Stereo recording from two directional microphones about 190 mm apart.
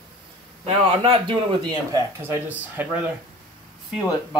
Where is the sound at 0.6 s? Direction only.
30° right (ahead or behind).